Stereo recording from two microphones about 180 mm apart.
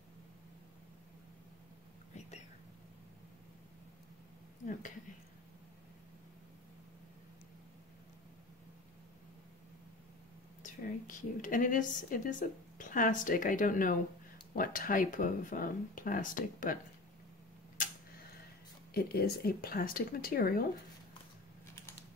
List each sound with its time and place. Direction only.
10.6 s a woman's voice: 45° left (ahead or behind)
18.9 s speech: 60° left (ahead or behind)